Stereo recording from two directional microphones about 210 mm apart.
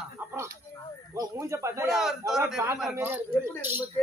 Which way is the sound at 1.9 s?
Centre (ahead or behind).